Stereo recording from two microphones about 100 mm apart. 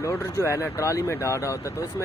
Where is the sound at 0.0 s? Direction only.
30° left (ahead or behind).